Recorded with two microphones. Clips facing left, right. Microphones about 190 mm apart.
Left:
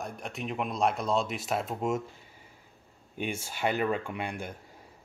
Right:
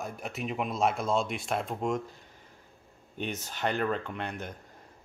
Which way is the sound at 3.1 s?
10° left (ahead or behind).